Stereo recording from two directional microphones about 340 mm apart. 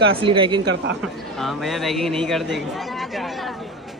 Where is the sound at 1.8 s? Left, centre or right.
Centre.